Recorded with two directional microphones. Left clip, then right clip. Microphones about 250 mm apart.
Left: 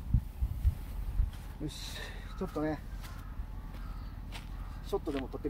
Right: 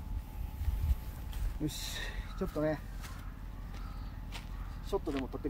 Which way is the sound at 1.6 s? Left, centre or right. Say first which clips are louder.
Right 3 dB; right.